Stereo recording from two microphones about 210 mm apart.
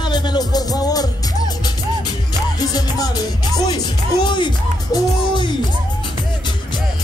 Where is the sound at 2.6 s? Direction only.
20° left (ahead or behind).